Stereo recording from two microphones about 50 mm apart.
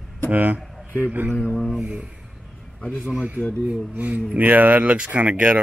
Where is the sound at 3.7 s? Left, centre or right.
Right.